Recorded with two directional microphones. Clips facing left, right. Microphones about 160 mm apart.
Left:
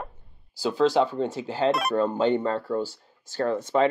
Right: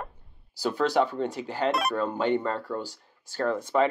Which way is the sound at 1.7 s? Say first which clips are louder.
Left 2 dB; centre (ahead or behind).